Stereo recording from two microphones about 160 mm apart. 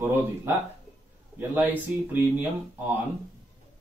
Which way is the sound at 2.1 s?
10° right (ahead or behind).